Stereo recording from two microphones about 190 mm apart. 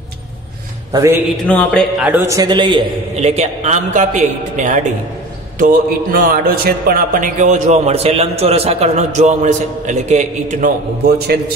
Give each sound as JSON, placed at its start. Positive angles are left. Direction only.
{"t": 0.9, "sound": "a man's voice", "side_deg": -10}
{"t": 1.5, "sound": "speech", "side_deg": 5}
{"t": 2.2, "sound": "a man's voice", "side_deg": -20}
{"t": 3.2, "sound": "speech", "side_deg": -35}
{"t": 11.1, "sound": "a man's voice", "side_deg": -55}